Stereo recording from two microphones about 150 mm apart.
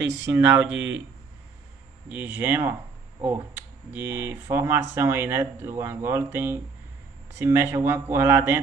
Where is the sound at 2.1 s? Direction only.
10° right (ahead or behind).